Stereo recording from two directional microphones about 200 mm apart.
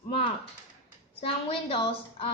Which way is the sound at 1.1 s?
30° left (ahead or behind).